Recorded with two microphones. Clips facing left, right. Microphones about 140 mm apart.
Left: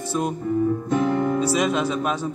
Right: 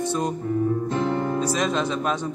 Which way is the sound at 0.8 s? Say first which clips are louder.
Left 3 dB; 30° right (ahead or behind).